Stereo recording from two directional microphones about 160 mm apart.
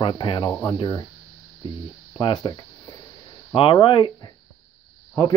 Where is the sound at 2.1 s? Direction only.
30° left (ahead or behind).